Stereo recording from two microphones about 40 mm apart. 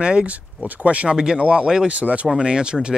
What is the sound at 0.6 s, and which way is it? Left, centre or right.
Speech, right.